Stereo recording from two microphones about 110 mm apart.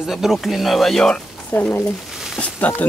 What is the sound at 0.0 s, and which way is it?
Speech, centre (ahead or behind).